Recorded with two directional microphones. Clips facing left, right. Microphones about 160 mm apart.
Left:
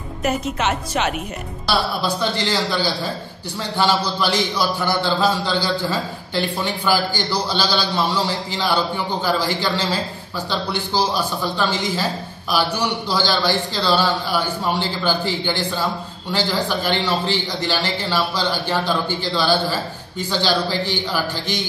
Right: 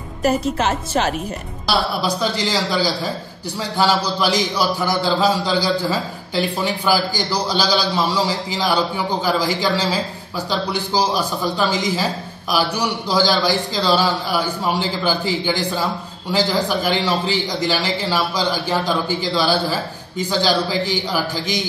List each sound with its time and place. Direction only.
0.2 s a woman's voice: 35° right (ahead or behind)
1.7 s a man's voice: 10° right (ahead or behind)